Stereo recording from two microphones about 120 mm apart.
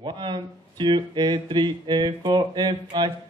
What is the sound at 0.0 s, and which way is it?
Speech, 40° right (ahead or behind).